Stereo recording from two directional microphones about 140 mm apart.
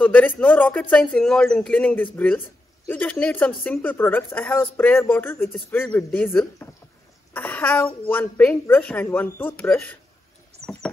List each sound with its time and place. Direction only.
0.0 s a woman's voice: 10° left (ahead or behind)
10.6 s rodents: 5° left (ahead or behind)